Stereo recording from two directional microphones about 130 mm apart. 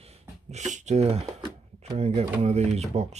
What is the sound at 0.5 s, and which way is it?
Speech, 65° right (ahead or behind).